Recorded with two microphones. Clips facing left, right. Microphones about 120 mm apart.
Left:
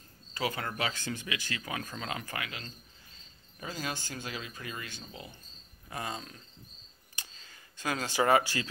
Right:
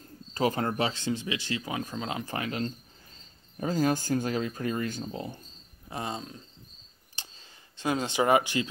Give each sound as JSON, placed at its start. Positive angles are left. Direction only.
{"t": 0.3, "sound": "speech", "side_deg": -40}
{"t": 5.9, "sound": "speech", "side_deg": -25}
{"t": 7.2, "sound": "a sound", "side_deg": -25}